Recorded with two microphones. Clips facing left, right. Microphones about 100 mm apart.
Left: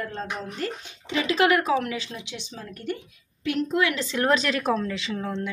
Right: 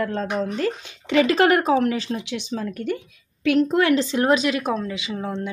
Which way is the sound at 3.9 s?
25° right (ahead or behind).